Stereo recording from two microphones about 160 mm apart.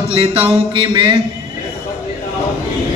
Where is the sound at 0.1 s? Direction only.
35° right (ahead or behind).